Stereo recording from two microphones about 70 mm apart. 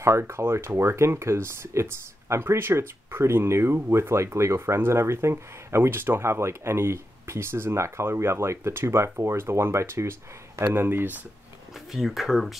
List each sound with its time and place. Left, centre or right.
0.2 s speech: right
11.9 s speech: centre